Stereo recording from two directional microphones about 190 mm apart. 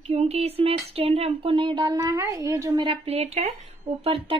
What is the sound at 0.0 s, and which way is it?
Speech, 35° right (ahead or behind).